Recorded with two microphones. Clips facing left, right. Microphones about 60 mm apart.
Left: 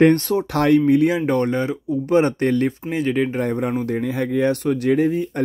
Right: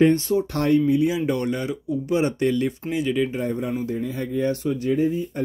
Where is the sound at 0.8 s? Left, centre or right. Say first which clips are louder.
Left 4 dB; left.